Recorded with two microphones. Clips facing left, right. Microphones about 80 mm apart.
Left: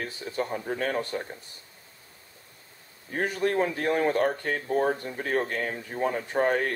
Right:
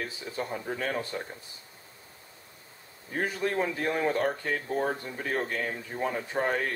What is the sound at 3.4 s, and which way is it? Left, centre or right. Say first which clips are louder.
Speech: left 5 dB; centre.